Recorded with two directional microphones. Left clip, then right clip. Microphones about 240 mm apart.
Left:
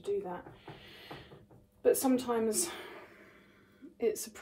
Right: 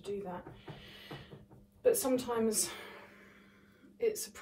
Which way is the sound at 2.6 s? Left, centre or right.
Left.